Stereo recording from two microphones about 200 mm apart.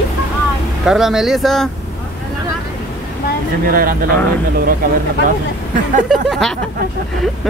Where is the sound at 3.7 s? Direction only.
45° right (ahead or behind).